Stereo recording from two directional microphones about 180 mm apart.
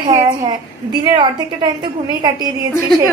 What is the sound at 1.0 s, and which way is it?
A woman's voice, 25° right (ahead or behind).